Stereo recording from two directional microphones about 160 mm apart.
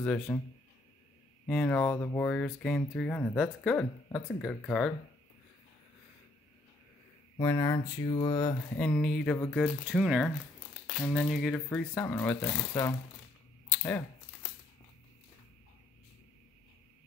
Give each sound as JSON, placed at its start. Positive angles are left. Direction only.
{"t": 0.0, "sound": "speech", "side_deg": 10}
{"t": 1.5, "sound": "speech", "side_deg": 10}
{"t": 7.3, "sound": "speech", "side_deg": 20}
{"t": 8.7, "sound": "speech", "side_deg": 10}
{"t": 9.8, "sound": "speech", "side_deg": -5}
{"t": 13.7, "sound": "crumpling", "side_deg": 10}